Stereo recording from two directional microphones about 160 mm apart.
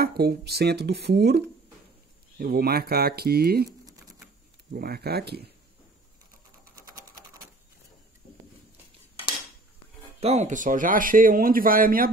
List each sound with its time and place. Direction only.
0.0 s speech: 80° right
2.3 s speech: 65° right (ahead or behind); by 5.5 s 90° right
10.2 s speech: 45° right (ahead or behind); by 12.1 s 60° right (ahead or behind)